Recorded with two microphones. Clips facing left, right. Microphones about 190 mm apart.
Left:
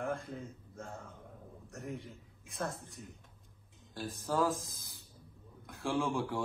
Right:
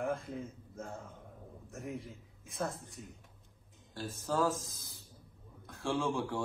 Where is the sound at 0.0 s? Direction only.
Centre (ahead or behind).